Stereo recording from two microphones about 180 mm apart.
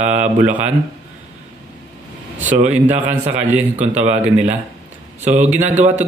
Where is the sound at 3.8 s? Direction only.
40° right (ahead or behind).